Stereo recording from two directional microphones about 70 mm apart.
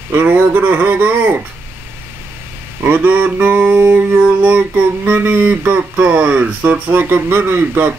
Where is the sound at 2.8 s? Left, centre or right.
Right.